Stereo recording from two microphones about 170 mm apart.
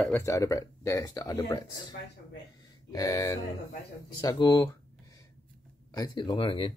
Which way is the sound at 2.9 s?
20° left (ahead or behind).